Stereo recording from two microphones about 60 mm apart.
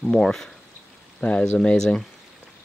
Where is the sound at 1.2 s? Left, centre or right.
Left.